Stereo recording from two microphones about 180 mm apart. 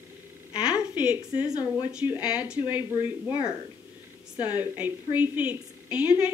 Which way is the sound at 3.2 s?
25° left (ahead or behind).